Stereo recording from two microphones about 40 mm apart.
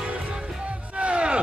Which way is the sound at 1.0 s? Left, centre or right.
Right.